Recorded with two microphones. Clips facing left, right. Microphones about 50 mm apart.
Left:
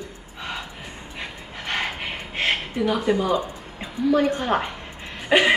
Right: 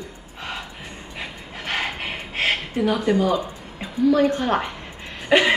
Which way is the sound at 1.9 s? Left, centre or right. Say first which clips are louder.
Right 1 dB; right.